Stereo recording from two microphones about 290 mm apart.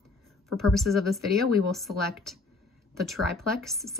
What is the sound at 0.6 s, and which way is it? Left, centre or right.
A woman's voice, centre.